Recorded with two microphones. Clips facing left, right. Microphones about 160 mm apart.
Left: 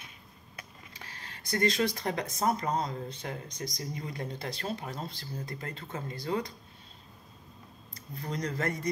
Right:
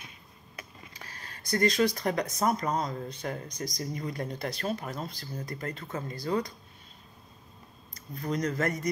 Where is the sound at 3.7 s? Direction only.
40° right (ahead or behind).